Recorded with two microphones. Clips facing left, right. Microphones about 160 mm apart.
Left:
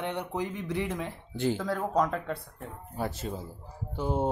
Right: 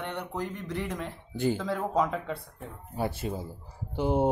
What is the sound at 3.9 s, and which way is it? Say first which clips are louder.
Speech: right 4 dB; 15° right (ahead or behind).